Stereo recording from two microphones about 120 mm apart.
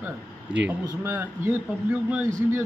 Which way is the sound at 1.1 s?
20° right (ahead or behind).